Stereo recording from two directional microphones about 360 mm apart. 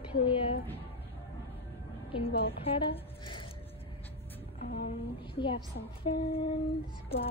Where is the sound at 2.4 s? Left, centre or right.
Centre.